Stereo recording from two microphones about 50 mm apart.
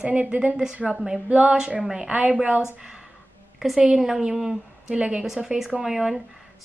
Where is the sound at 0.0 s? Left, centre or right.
Right.